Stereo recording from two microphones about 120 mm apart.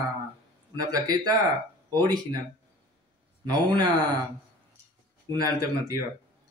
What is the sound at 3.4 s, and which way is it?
Speech, 35° right (ahead or behind).